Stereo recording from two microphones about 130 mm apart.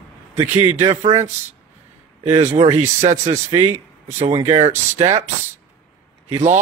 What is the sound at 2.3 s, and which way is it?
Speech, 55° right (ahead or behind).